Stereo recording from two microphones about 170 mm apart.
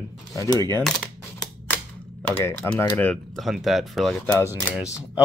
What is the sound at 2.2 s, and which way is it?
Speech, 10° left (ahead or behind).